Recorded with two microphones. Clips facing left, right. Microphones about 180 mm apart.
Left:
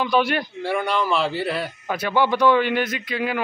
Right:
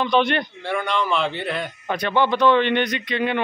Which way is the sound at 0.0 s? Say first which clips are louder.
Right 1 dB; 5° left (ahead or behind).